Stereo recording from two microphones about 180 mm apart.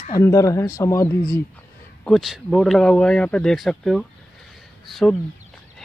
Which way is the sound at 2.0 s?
Centre (ahead or behind).